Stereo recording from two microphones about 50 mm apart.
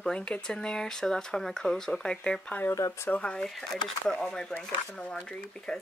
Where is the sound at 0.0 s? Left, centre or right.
Centre.